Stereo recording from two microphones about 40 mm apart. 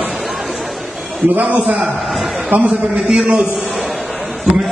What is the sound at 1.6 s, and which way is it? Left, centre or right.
Speech, centre.